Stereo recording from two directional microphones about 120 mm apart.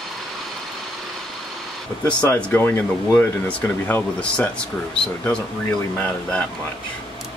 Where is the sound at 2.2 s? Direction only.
15° left (ahead or behind).